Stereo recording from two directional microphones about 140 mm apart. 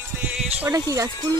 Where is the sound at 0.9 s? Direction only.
25° right (ahead or behind).